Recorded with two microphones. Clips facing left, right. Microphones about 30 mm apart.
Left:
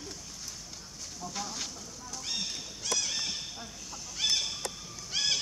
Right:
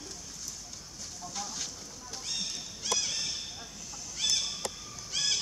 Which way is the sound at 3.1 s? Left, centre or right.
Centre.